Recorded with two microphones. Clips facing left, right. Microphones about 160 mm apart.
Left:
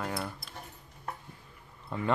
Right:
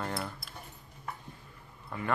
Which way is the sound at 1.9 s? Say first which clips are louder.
Left 3 dB; 20° left (ahead or behind).